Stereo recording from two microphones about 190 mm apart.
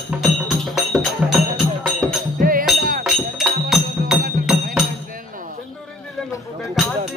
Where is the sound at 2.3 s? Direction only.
50° right (ahead or behind).